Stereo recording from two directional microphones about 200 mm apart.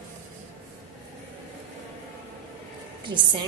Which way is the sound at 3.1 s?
25° right (ahead or behind).